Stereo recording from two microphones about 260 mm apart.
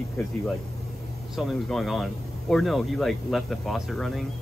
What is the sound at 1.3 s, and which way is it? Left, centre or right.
Speech, centre.